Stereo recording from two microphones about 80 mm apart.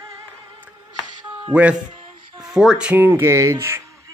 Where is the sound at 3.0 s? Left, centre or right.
Right.